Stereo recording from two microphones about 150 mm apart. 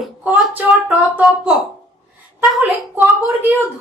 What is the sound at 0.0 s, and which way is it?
Speech, 10° right (ahead or behind).